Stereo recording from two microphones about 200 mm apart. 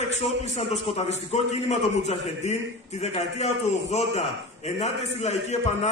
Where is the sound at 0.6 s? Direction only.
30° left (ahead or behind).